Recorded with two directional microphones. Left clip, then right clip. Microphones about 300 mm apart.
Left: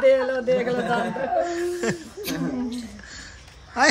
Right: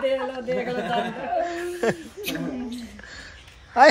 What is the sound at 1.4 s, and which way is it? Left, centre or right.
Speech, centre.